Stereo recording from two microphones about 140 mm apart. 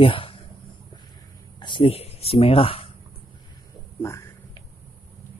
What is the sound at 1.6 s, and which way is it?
Speech, 40° left (ahead or behind).